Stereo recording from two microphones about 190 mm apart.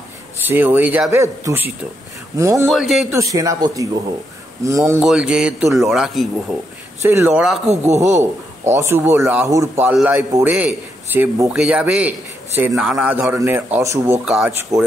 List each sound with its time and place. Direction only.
0.5 s a man's voice: 10° right (ahead or behind)
2.7 s a man's voice: centre (ahead or behind)
3.1 s a man's voice: 15° right (ahead or behind)
5.0 s a man's voice: 5° right (ahead or behind)
7.6 s a man's voice: 35° right (ahead or behind)
8.7 s a man's voice: 15° right (ahead or behind)
14.2 s a man's voice: centre (ahead or behind)
14.7 s a man's voice: 15° right (ahead or behind)